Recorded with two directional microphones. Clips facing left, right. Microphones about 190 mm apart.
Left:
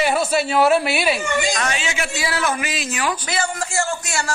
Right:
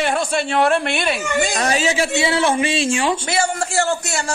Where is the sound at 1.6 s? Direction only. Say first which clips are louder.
Right 6 dB; 35° right (ahead or behind).